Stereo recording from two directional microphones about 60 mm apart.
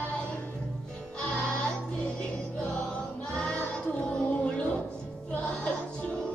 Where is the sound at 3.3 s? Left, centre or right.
Centre.